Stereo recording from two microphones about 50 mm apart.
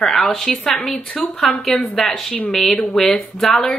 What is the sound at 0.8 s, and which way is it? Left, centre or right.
Speech, left.